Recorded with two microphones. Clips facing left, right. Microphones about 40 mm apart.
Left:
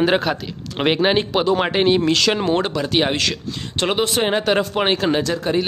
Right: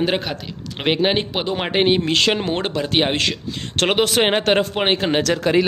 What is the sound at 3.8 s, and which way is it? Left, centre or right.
Speech, right.